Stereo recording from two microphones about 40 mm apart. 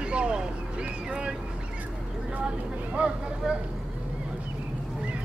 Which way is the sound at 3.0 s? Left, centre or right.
Right.